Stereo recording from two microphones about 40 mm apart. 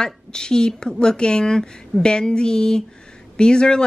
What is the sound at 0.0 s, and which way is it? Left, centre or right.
Speech, centre.